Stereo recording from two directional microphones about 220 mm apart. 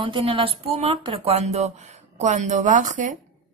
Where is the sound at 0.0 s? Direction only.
25° right (ahead or behind).